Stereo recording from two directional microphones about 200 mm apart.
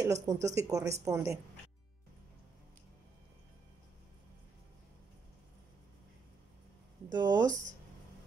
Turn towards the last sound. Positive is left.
turn(degrees=-20)  # may be behind; listen again after turning